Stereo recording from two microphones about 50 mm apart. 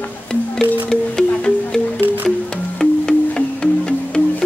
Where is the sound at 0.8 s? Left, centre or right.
Centre.